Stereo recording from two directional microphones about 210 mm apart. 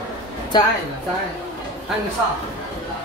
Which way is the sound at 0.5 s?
20° left (ahead or behind).